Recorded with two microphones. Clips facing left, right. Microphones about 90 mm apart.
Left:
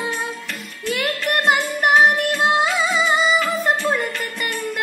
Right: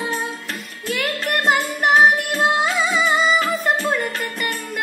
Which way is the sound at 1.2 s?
Centre (ahead or behind).